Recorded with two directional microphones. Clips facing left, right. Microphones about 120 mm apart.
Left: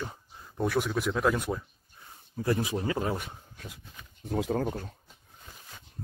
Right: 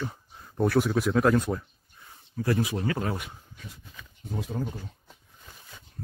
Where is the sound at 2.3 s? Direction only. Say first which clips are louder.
Right 1 dB; 20° left (ahead or behind).